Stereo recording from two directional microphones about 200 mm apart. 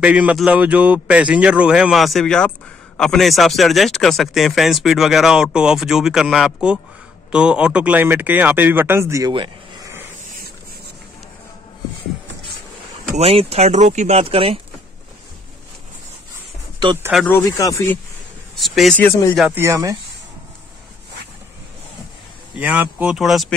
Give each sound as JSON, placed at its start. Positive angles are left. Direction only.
{"t": 0.0, "sound": "speech", "side_deg": -5}
{"t": 13.2, "sound": "speech", "side_deg": -30}
{"t": 16.8, "sound": "speech", "side_deg": -20}
{"t": 17.3, "sound": "speech", "side_deg": 15}
{"t": 18.6, "sound": "speech", "side_deg": 0}
{"t": 19.3, "sound": "speech", "side_deg": -5}
{"t": 22.6, "sound": "speech", "side_deg": -10}